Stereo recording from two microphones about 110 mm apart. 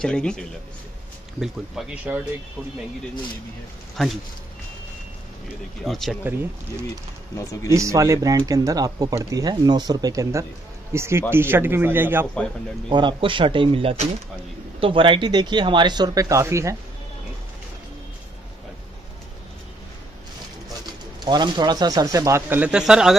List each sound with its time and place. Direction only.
0.0 s a man's voice: 5° left (ahead or behind)
1.4 s speech: 5° right (ahead or behind)
3.9 s speech: centre (ahead or behind)
5.9 s speech: centre (ahead or behind)
6.2 s a man's voice: 20° right (ahead or behind)
12.9 s speech: 45° right (ahead or behind); by 16.7 s 25° right (ahead or behind)
21.2 s speech: 40° right (ahead or behind)
22.6 s speech: 5° right (ahead or behind)